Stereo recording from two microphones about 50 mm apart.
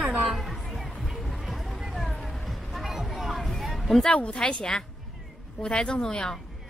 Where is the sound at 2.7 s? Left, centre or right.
Centre.